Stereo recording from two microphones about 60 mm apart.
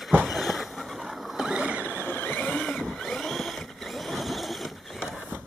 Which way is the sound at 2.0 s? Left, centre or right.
Left.